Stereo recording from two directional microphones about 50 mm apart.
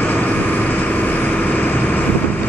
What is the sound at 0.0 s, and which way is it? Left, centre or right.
Vehicle, left.